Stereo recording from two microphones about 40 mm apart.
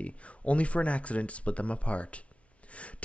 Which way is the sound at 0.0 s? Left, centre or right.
Left.